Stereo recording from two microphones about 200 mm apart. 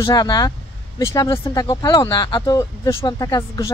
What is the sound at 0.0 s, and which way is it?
Speech, 20° left (ahead or behind).